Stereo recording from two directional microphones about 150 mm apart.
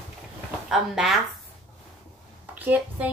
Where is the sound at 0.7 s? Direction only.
5° right (ahead or behind).